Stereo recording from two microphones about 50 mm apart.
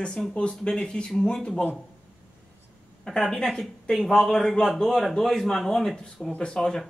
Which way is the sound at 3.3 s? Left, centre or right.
Centre.